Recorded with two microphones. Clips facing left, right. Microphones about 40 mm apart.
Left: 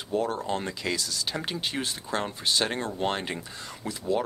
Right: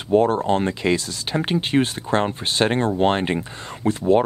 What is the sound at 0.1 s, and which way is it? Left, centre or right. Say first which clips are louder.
Speech: right 11 dB; right.